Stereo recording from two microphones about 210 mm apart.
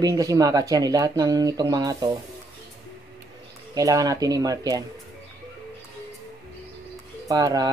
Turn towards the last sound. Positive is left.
turn(degrees=-15)  # may be behind; listen again after turning